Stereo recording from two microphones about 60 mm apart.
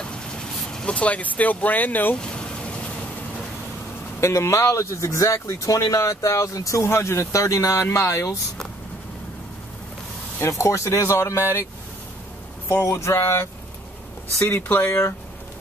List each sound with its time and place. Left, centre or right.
0.0 s vehicle: centre; by 2.1 s left
2.1 s vehicle: centre
4.2 s speech: left
6.8 s speech: left
10.4 s speech: left
12.6 s speech: left
14.5 s speech: left
14.9 s speech: left